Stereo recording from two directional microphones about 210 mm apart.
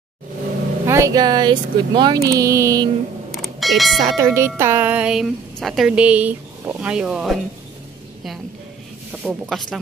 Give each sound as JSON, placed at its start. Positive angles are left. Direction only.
{"t": 0.8, "sound": "speech", "side_deg": -15}
{"t": 3.3, "sound": "a sound", "side_deg": 0}
{"t": 4.0, "sound": "speech", "side_deg": -15}
{"t": 9.1, "sound": "speech", "side_deg": 0}